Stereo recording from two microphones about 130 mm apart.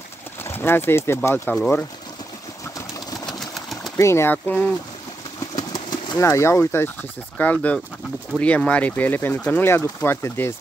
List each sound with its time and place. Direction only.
0.4 s speech: 15° left (ahead or behind)
3.3 s pigeon: centre (ahead or behind)
3.9 s speech: 20° left (ahead or behind)
5.4 s engine: 30° left (ahead or behind)
6.1 s speech: 20° left (ahead or behind)